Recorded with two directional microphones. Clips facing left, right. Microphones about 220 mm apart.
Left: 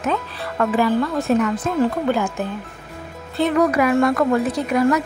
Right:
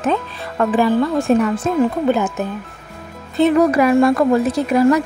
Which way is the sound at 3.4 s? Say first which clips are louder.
Right 4 dB; 30° right (ahead or behind).